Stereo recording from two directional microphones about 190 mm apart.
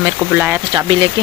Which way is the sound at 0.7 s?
25° right (ahead or behind).